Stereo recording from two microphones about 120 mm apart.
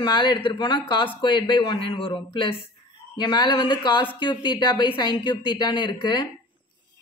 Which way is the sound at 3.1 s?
40° left (ahead or behind).